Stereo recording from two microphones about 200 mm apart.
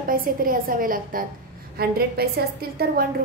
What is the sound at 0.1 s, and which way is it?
A woman's voice, 45° right (ahead or behind).